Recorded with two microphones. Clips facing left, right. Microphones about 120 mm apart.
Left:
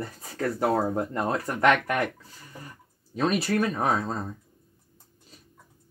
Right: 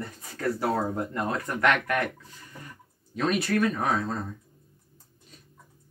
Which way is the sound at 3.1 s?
30° left (ahead or behind).